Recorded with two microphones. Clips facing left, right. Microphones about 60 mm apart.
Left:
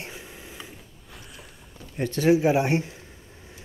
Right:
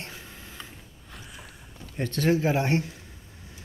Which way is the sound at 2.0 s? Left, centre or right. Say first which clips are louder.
Left 4 dB; centre.